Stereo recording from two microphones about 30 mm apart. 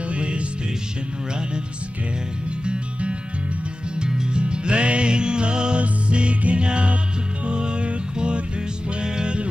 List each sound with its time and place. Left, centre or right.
0.1 s music: right
2.6 s music: right